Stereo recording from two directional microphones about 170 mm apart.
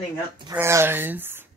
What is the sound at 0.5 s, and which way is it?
Speech, 15° right (ahead or behind).